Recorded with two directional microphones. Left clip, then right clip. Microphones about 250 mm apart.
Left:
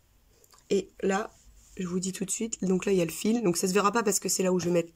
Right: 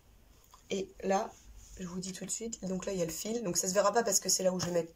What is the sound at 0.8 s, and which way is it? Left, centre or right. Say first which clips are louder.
Speech: left 1 dB; left.